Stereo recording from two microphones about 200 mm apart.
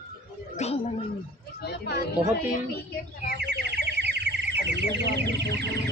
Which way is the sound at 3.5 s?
55° right (ahead or behind).